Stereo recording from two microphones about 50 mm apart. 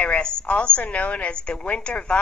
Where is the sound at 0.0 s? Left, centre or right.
Left.